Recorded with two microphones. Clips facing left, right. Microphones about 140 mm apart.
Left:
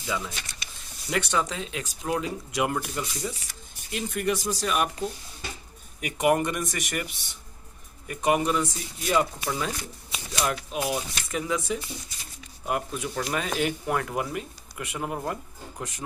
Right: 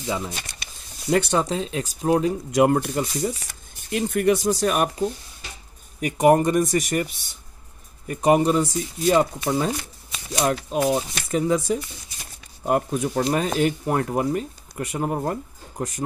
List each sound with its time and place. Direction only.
0.0 s speech: 35° right (ahead or behind)
5.9 s speech: 40° right (ahead or behind)
8.1 s speech: 35° right (ahead or behind)